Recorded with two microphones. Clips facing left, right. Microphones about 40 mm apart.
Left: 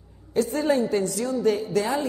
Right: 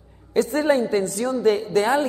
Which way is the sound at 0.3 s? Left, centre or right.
Right.